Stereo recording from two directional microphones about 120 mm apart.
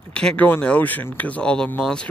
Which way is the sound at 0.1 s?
10° left (ahead or behind).